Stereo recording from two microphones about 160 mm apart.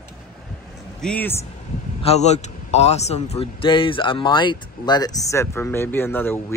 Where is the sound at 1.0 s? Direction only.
10° left (ahead or behind).